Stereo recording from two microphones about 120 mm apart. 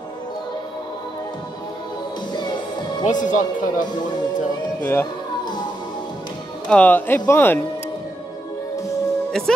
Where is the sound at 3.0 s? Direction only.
90° left.